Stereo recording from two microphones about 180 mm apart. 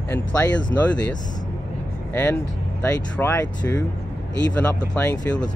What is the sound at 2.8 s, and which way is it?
Speech, 15° left (ahead or behind).